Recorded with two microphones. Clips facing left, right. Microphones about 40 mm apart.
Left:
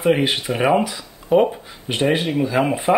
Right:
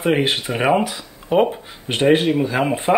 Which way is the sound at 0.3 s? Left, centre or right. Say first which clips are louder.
Even; centre.